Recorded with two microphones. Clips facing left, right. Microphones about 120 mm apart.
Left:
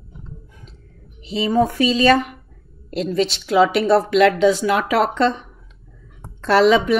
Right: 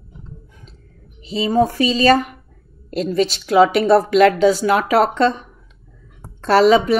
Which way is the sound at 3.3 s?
45° right (ahead or behind).